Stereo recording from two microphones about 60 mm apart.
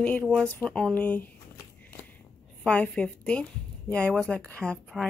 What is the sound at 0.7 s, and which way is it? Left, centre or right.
Speech, centre.